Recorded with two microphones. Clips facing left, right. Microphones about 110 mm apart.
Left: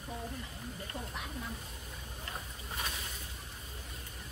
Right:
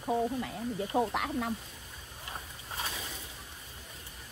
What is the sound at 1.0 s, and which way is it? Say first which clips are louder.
Speech: right 14 dB; 70° right (ahead or behind).